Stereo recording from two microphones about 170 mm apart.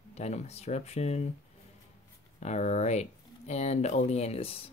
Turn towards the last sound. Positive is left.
turn(degrees=35)  # may be behind; listen again after turning